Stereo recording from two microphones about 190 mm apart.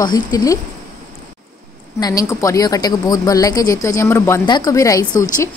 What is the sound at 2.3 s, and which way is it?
Speech, 15° left (ahead or behind).